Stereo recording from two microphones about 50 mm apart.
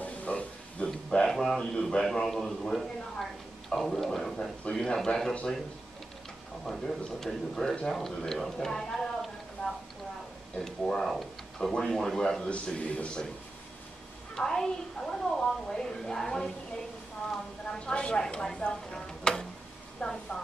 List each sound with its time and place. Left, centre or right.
0.0 s a sound: left
1.2 s a man's voice: centre
6.6 s a man's voice: centre
10.6 s a man's voice: centre
12.4 s a man's voice: left
14.3 s a woman's voice: centre
17.6 s speech: centre
18.2 s chopping: centre
20.0 s a man's voice: centre